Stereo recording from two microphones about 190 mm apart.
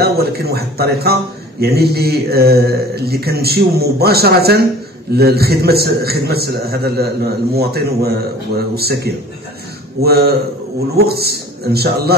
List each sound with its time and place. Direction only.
0.0 s a man's voice: 55° right (ahead or behind)